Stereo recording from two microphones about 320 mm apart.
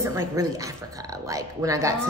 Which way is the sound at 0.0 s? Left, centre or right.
Centre.